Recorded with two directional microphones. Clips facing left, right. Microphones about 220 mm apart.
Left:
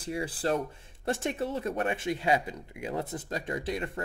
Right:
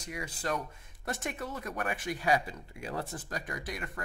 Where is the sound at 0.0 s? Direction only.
30° left (ahead or behind).